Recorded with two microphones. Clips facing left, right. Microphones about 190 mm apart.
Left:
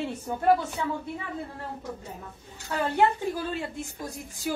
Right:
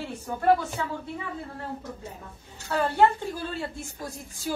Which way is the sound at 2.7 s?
15° left (ahead or behind).